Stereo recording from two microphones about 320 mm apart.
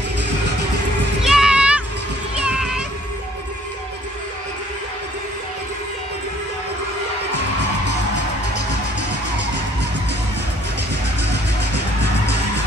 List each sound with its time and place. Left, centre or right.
1.2 s music: centre
11.7 s music: right